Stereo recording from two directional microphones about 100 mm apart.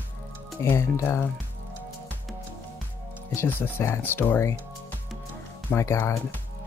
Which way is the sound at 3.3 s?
25° left (ahead or behind).